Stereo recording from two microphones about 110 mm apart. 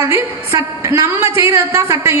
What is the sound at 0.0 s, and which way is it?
A woman's voice, 25° right (ahead or behind).